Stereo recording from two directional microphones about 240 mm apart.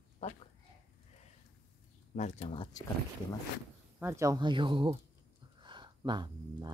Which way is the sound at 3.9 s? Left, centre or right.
Centre.